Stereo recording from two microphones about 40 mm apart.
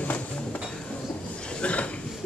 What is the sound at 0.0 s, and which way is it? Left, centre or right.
Music, left.